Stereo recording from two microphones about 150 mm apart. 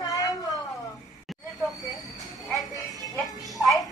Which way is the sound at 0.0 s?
25° left (ahead or behind).